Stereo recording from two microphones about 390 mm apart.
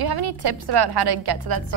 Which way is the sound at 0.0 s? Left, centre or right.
Right.